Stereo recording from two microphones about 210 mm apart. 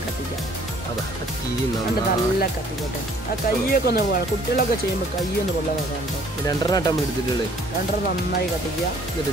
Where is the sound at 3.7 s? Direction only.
45° left (ahead or behind).